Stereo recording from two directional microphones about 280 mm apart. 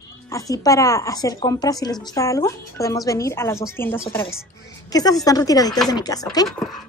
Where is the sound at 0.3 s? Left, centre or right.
Centre.